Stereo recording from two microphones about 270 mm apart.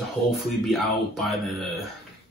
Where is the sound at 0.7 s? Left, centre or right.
Centre.